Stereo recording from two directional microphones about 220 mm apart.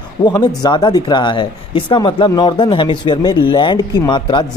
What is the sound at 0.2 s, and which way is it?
Speech, 20° left (ahead or behind).